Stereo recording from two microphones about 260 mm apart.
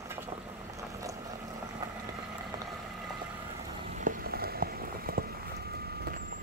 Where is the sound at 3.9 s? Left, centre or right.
Right.